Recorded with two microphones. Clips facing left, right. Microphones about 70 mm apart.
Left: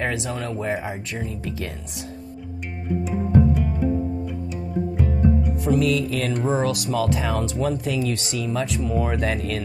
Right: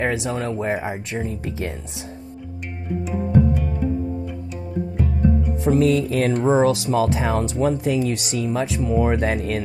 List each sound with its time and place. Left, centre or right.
0.0 s speech: centre
0.3 s speech: right
1.2 s music: right
5.6 s music: right
6.4 s speech: right